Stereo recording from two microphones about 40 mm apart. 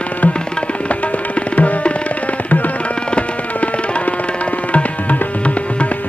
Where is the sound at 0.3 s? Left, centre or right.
Left.